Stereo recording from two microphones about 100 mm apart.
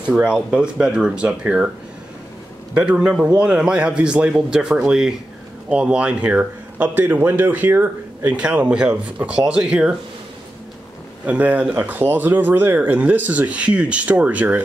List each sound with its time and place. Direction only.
0.0 s speech: 10° right (ahead or behind)
2.7 s speech: 10° right (ahead or behind)
11.2 s speech: 15° right (ahead or behind)